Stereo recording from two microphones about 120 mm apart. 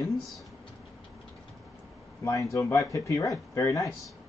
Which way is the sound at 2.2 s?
25° left (ahead or behind).